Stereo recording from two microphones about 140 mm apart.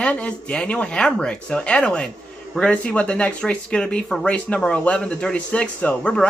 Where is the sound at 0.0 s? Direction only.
10° left (ahead or behind).